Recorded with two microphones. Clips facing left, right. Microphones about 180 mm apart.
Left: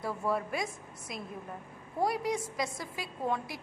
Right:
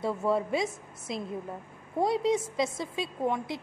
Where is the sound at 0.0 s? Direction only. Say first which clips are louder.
Right 5 dB; 25° right (ahead or behind).